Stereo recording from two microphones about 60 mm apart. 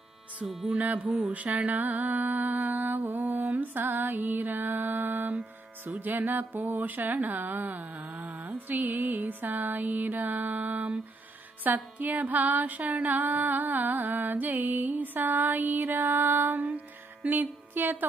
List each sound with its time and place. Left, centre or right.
0.5 s music: centre
0.7 s music: right
2.7 s mantra: right
3.5 s music: right
17.3 s music: right